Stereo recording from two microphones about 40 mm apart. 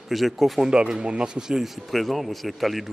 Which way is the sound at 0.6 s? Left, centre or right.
Centre.